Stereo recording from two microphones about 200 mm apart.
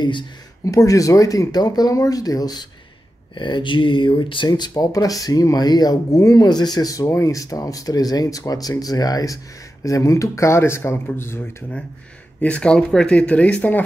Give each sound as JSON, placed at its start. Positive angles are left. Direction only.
{"t": 0.7, "sound": "speech", "side_deg": 15}